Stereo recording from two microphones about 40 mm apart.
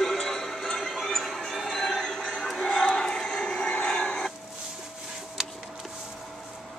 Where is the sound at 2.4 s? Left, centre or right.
Centre.